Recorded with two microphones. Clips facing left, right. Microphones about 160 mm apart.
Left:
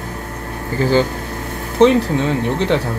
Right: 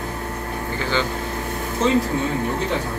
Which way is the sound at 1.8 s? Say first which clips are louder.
Left 9 dB; 70° left (ahead or behind).